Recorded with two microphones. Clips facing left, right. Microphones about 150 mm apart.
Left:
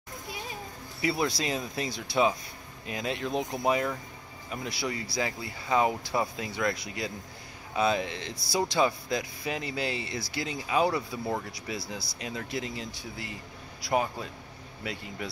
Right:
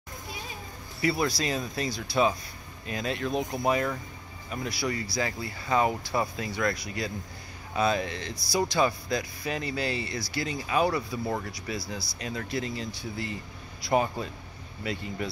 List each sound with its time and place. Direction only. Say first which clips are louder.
1.0 s speech: right 2 dB; 20° left (ahead or behind)
11.0 s speech: right 1 dB; centre (ahead or behind)
11.6 s speech: right 2 dB; 15° left (ahead or behind)